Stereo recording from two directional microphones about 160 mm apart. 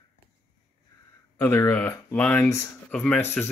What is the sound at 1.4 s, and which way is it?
Speech, 15° left (ahead or behind).